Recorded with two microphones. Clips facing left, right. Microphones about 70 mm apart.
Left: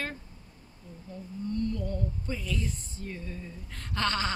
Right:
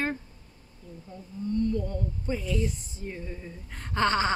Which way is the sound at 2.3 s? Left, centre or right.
Right.